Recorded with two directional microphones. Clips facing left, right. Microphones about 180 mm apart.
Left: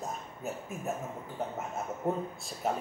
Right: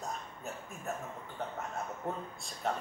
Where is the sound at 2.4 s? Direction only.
5° left (ahead or behind).